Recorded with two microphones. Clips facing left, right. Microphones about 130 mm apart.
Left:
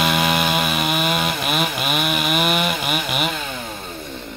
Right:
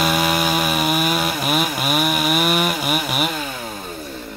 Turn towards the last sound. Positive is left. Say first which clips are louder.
# right 1 dB
turn(degrees=-5)  # may be behind; listen again after turning